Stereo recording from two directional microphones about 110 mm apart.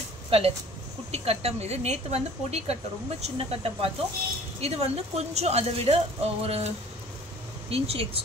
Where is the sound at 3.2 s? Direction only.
65° right (ahead or behind).